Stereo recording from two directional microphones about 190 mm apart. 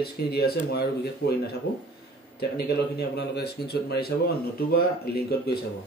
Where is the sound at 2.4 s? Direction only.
60° left (ahead or behind).